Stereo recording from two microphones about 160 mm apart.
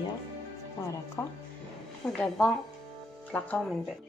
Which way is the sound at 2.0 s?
5° left (ahead or behind).